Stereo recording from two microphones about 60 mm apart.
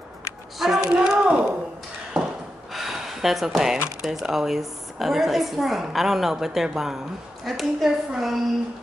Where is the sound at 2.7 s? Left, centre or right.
Centre.